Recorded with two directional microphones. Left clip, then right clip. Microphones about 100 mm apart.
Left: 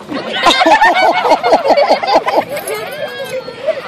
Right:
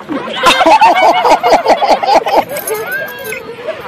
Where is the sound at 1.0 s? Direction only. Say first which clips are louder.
Right 2 dB; 50° right (ahead or behind).